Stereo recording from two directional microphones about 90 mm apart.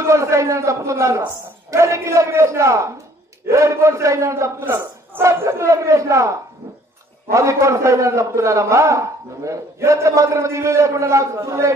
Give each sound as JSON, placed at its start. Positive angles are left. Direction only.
{"t": 0.0, "sound": "a man's voice", "side_deg": -35}